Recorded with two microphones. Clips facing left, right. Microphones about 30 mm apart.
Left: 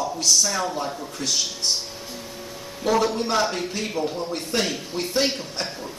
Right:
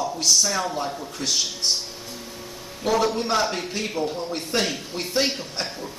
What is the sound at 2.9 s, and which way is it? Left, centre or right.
Speech, centre.